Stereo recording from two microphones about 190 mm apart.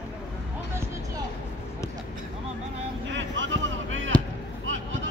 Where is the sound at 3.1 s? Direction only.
75° right (ahead or behind).